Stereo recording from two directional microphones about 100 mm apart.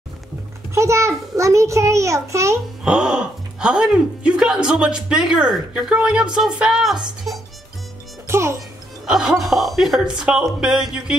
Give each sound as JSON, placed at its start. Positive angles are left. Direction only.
{"t": 0.7, "sound": "a child's voice", "side_deg": -30}
{"t": 2.8, "sound": "speech", "side_deg": -10}
{"t": 8.3, "sound": "a child's voice", "side_deg": -25}
{"t": 9.0, "sound": "speech", "side_deg": -5}